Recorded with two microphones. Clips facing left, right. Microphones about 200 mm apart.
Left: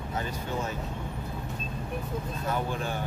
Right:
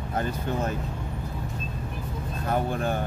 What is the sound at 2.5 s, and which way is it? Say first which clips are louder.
Speech: right 6 dB; 50° right (ahead or behind).